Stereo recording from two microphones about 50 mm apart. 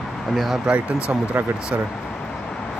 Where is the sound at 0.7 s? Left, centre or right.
Centre.